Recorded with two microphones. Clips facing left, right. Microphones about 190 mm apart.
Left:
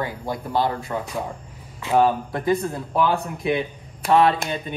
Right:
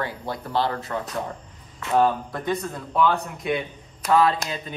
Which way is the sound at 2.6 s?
25° left (ahead or behind).